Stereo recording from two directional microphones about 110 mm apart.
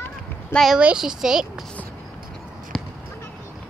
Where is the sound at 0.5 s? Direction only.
Centre (ahead or behind).